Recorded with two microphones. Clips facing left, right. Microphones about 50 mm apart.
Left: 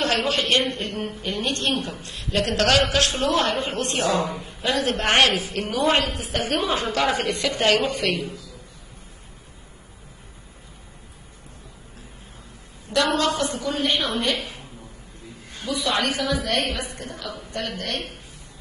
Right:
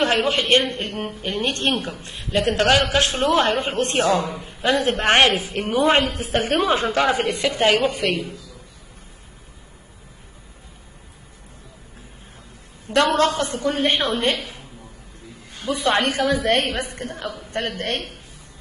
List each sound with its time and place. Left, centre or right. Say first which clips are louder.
0.0 s a man's voice: right 3 dB; right
2.0 s a man's voice: right 4 dB; right
7.2 s a woman's voice: right 2 dB; centre
12.9 s a woman's voice: right 4 dB; right
15.6 s a woman's voice: right 4 dB; right